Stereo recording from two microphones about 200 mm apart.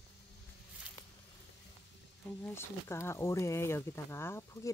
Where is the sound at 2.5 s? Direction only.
10° left (ahead or behind).